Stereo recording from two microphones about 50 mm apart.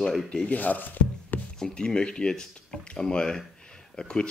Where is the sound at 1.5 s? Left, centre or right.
Centre.